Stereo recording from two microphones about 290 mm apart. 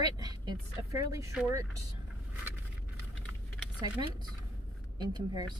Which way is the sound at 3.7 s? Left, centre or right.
Centre.